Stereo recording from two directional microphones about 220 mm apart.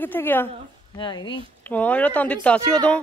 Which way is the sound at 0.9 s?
20° left (ahead or behind).